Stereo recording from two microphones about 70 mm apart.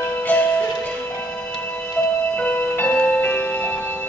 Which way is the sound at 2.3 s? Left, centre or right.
Left.